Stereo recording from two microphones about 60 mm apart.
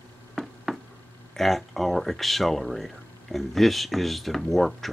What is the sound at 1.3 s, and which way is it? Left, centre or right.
Speech, centre.